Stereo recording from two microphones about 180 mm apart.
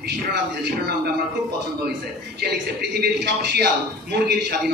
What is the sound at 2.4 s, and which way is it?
A man's voice, 65° right (ahead or behind).